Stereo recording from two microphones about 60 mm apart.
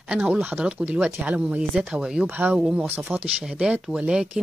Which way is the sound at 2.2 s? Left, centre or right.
Right.